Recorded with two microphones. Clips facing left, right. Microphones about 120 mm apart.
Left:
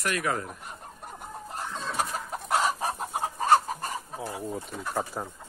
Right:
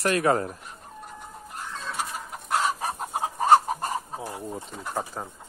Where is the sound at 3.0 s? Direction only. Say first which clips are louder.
Right 2 dB; 10° right (ahead or behind).